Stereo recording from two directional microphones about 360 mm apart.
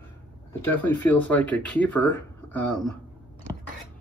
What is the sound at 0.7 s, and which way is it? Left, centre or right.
Speech, centre.